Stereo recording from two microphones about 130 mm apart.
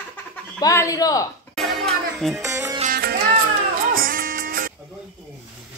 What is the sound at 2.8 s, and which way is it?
Music, 90° right.